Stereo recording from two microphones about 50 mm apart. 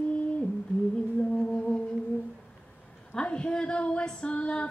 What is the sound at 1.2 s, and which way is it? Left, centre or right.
Music, left.